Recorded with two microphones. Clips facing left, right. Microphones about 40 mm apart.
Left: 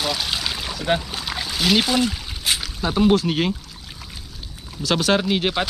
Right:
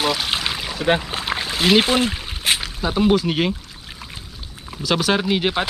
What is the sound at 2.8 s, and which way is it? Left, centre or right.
Speech, centre.